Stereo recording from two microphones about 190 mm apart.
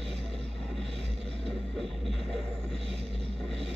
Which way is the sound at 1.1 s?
Centre (ahead or behind).